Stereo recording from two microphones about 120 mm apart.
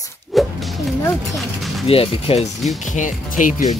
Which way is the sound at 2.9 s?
90° left.